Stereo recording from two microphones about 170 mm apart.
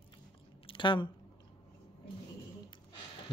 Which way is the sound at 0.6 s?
30° left (ahead or behind).